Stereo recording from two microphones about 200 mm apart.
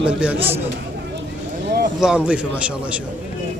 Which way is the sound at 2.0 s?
5° right (ahead or behind).